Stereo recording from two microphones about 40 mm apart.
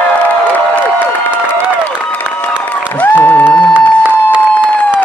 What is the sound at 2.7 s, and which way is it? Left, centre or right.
Applause, left.